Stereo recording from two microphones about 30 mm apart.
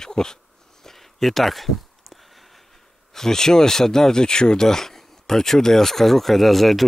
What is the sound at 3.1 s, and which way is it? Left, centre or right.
Speech, centre.